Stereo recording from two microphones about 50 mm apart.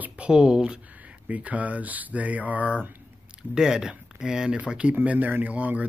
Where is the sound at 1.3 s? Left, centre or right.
Right.